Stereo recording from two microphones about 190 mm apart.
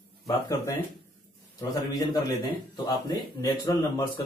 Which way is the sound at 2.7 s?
20° left (ahead or behind).